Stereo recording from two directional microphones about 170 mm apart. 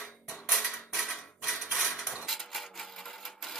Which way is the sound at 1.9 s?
Centre (ahead or behind).